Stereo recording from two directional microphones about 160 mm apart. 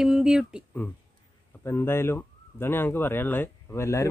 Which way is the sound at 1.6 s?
15° left (ahead or behind).